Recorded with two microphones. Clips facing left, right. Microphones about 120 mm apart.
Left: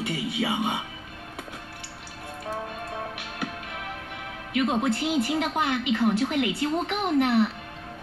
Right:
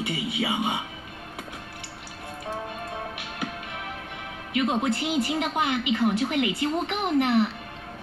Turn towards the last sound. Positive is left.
turn(degrees=0)  # may be behind; listen again after turning